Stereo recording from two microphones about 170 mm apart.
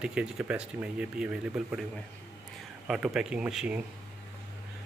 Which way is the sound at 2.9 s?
5° right (ahead or behind).